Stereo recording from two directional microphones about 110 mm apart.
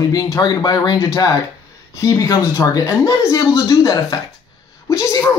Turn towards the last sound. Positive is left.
turn(degrees=30)  # may be behind; listen again after turning